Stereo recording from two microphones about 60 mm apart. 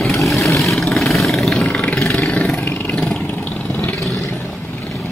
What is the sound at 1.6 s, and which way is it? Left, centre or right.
Vehicle, left.